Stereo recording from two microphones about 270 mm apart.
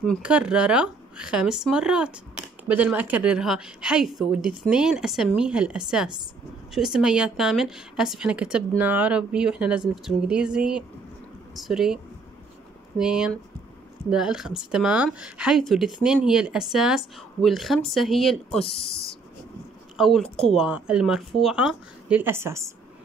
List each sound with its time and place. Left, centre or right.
0.0 s speech: centre
18.7 s speech: left
20.0 s speech: centre